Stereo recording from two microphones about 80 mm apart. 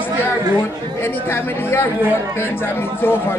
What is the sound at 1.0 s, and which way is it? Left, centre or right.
Speech, left.